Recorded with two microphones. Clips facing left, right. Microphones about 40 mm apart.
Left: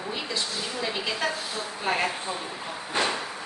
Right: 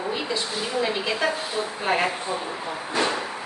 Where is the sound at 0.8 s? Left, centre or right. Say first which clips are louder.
Right 3 dB; centre.